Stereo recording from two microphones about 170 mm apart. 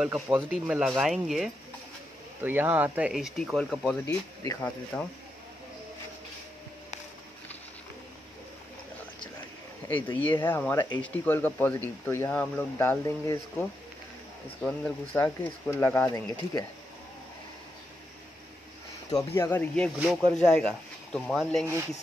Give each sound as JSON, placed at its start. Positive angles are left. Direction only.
{"t": 0.0, "sound": "speech", "side_deg": -10}
{"t": 9.8, "sound": "speech", "side_deg": 10}
{"t": 16.1, "sound": "speech", "side_deg": 25}
{"t": 19.0, "sound": "speech", "side_deg": 20}